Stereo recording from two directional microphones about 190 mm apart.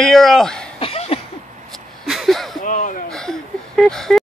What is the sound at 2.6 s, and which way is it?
Speech, 45° left (ahead or behind).